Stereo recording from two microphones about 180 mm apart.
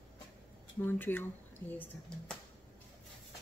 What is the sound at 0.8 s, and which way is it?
Speech, 10° left (ahead or behind).